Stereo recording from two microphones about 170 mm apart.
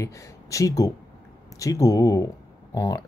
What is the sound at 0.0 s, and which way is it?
Speech, 20° left (ahead or behind).